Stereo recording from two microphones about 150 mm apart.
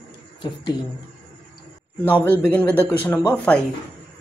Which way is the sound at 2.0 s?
10° left (ahead or behind).